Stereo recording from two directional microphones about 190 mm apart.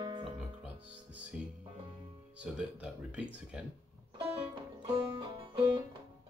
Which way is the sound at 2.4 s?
5° right (ahead or behind).